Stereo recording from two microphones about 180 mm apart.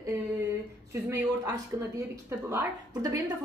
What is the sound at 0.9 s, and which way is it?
A woman's voice, 15° right (ahead or behind).